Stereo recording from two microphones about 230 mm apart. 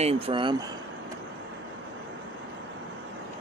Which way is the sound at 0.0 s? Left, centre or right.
Right.